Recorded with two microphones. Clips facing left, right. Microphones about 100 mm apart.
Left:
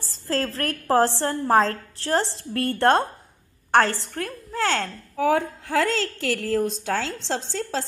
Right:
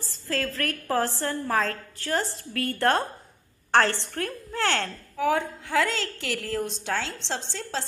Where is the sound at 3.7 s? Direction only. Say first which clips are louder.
Left 2 dB; 10° left (ahead or behind).